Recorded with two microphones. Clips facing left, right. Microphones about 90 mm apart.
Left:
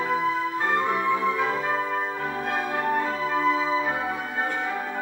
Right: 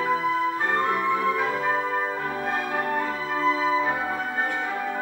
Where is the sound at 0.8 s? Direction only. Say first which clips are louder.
Even; centre (ahead or behind).